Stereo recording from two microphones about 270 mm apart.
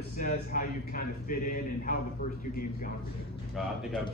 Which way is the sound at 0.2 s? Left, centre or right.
Left.